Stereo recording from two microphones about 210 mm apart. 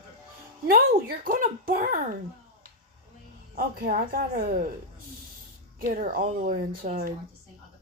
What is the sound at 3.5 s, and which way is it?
Speech, 45° right (ahead or behind).